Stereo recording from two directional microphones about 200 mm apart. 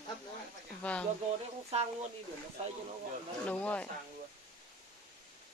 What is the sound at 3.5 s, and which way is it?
Speech, 5° left (ahead or behind).